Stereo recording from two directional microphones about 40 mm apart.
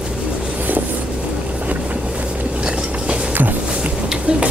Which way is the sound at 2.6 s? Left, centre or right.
Right.